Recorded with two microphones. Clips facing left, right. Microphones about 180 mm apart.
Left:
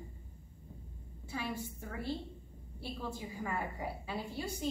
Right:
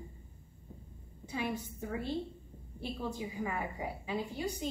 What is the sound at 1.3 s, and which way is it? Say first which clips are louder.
A woman's voice: right 3 dB; 20° right (ahead or behind).